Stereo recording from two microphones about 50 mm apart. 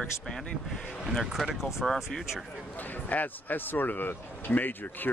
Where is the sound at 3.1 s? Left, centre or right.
Left.